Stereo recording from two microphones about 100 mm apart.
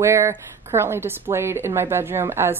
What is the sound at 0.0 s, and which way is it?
A woman's voice, 30° right (ahead or behind).